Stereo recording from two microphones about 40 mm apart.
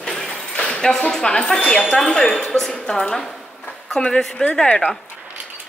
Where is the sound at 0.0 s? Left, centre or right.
Centre.